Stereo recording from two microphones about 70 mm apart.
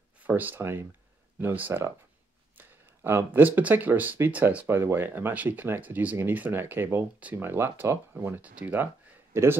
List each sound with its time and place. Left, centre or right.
0.2 s speech: right
0.6 s speech: right; by 4.6 s centre
4.6 s speech: right
9.3 s a man's voice: right